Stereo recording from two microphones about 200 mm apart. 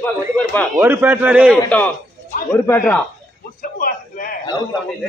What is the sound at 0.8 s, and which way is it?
Speech, 10° right (ahead or behind).